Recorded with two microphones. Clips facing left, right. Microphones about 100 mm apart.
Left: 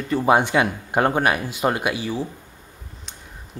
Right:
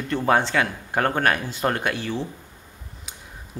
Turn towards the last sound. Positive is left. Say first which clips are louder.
# right 1 dB
turn(degrees=-5)  # may be behind; listen again after turning